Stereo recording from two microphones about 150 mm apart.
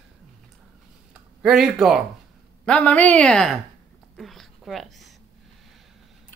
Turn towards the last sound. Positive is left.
turn(degrees=0)  # may be behind; listen again after turning